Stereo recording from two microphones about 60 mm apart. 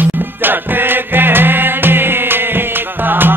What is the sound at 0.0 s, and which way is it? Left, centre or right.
Music, right.